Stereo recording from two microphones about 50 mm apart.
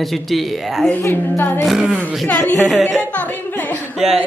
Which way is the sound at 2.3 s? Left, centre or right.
Left.